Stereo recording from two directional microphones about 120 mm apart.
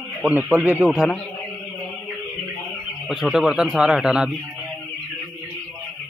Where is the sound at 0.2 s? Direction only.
15° right (ahead or behind).